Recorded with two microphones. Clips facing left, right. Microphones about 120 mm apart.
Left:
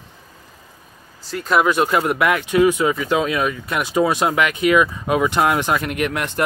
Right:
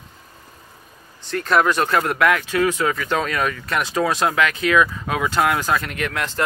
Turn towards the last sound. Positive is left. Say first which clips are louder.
# left 3 dB
turn(degrees=20)  # may be behind; listen again after turning